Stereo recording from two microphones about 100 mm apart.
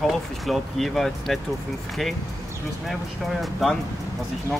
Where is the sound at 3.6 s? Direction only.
Centre (ahead or behind).